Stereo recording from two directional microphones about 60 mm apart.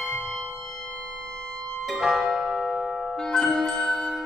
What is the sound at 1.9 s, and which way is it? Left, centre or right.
Music, centre.